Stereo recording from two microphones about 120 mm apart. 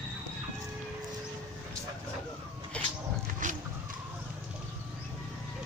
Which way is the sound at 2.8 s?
10° left (ahead or behind).